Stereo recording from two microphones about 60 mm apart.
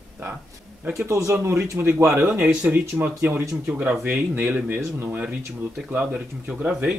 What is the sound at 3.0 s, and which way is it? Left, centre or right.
Speech, right.